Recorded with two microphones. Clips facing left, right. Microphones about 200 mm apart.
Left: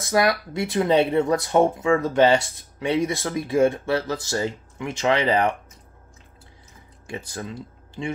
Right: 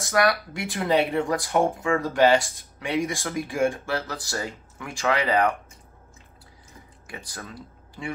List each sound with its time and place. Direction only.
0.1 s speech: 25° left (ahead or behind)
7.1 s speech: 25° left (ahead or behind)